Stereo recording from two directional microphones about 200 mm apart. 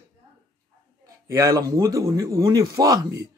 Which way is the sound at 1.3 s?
15° right (ahead or behind).